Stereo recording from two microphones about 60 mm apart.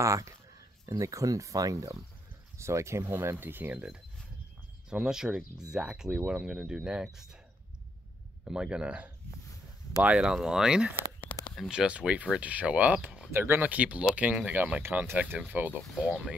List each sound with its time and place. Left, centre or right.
0.0 s speech: right
2.5 s speech: right
4.8 s speech: centre
8.5 s speech: centre
10.3 s speech: centre
11.3 s a sound: left
11.7 s speech: centre
13.3 s speech: right